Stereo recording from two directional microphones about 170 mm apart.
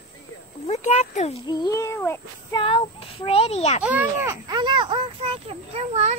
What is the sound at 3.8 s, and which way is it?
Speech, 10° right (ahead or behind).